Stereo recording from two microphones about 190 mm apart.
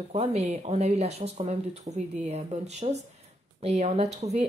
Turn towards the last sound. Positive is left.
turn(degrees=-35)  # may be behind; listen again after turning